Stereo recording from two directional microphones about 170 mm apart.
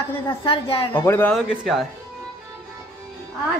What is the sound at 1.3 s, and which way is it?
Speech, centre (ahead or behind).